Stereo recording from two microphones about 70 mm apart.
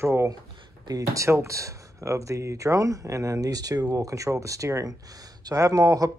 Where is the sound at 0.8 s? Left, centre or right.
Right.